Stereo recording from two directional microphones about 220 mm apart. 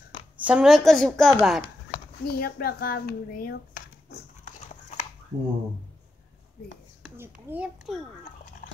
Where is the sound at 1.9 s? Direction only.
45° left (ahead or behind).